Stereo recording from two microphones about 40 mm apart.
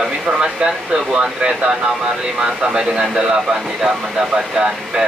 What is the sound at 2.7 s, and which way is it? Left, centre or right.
Speech, centre.